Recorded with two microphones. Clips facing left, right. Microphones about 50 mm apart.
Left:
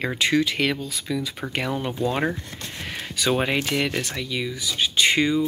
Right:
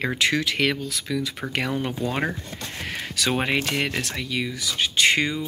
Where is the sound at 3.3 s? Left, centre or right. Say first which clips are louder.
Left 1 dB; right.